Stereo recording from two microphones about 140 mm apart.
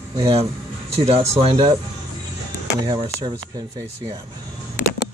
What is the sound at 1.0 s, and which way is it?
Speech, 45° right (ahead or behind).